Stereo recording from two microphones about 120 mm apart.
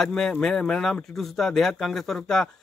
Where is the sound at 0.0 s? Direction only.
5° left (ahead or behind).